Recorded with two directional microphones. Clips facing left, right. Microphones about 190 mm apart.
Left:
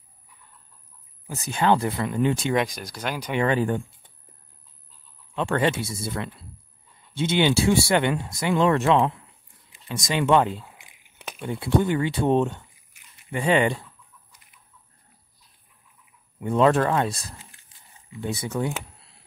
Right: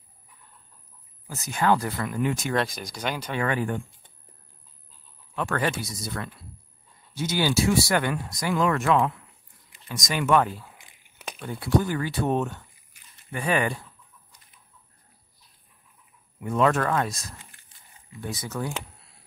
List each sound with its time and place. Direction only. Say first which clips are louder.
1.4 s speech: left 2 dB; 25° left (ahead or behind)
2.5 s speech: left 2 dB; 10° left (ahead or behind)
3.4 s speech: left 4 dB; 30° left (ahead or behind)
5.3 s speech: left 4 dB; 25° left (ahead or behind)
16.3 s speech: left 3 dB; 25° left (ahead or behind)